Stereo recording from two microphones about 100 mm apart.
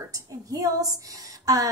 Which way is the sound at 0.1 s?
35° right (ahead or behind).